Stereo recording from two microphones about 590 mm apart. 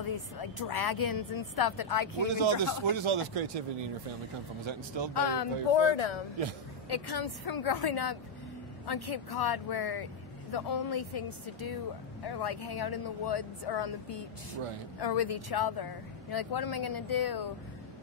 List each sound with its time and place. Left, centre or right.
0.4 s speech: left
2.2 s speech: right
4.6 s speech: right
5.1 s speech: left
6.9 s speech: left
15.0 s speech: left